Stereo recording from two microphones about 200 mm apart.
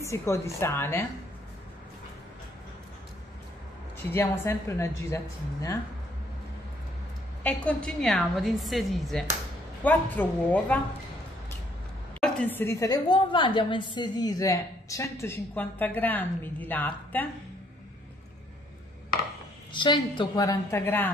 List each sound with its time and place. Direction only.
0.0 s a woman's voice: 15° left (ahead or behind)
4.1 s a woman's voice: 15° left (ahead or behind)
7.4 s a woman's voice: 5° left (ahead or behind)
12.2 s a woman's voice: 5° left (ahead or behind)
19.7 s a woman's voice: 25° left (ahead or behind)